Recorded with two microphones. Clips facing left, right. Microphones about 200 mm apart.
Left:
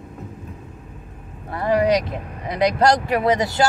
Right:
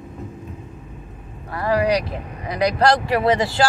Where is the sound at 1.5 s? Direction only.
20° left (ahead or behind).